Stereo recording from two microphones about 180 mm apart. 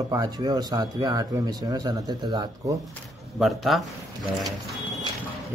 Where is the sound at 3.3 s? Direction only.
Centre (ahead or behind).